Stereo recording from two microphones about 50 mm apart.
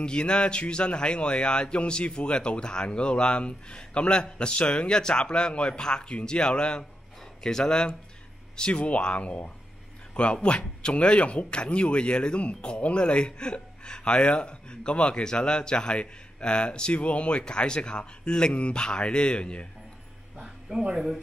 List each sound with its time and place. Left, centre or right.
0.0 s speech: centre
20.9 s speech: centre